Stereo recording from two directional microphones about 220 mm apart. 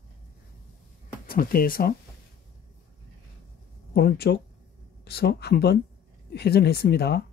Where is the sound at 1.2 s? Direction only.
40° left (ahead or behind).